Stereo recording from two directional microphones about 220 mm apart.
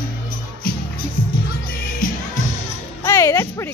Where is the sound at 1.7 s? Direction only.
40° left (ahead or behind).